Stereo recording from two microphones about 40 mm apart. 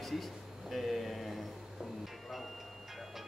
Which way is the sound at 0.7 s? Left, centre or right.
Centre.